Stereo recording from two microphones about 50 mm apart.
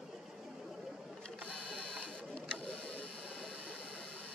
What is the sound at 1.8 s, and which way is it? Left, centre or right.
Printer, left.